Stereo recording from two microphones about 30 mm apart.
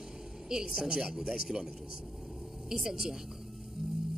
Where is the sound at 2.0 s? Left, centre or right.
Centre.